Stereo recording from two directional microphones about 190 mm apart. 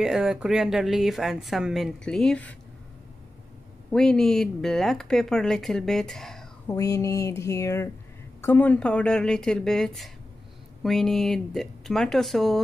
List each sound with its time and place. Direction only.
0.0 s speech: 5° right (ahead or behind)
3.9 s speech: 5° left (ahead or behind)
6.7 s a sound: 15° left (ahead or behind)
8.4 s speech: 10° left (ahead or behind)